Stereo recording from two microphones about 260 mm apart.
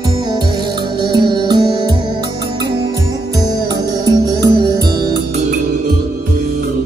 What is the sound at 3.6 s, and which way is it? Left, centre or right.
Music, centre.